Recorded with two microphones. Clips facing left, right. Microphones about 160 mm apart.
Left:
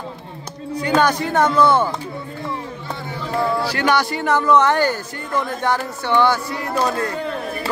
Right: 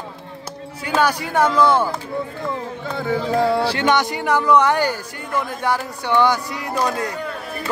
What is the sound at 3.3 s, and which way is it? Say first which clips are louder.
Speech: right 1 dB; 90° right.